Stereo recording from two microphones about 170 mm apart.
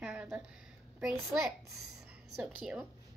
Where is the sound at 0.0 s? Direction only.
10° right (ahead or behind).